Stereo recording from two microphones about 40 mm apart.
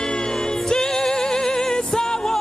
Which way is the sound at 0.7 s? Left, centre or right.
Centre.